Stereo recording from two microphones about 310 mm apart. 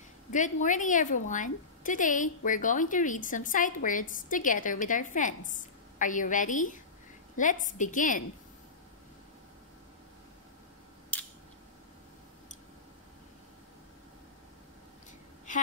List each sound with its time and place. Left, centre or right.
0.3 s a woman's voice: left
11.1 s scissors: centre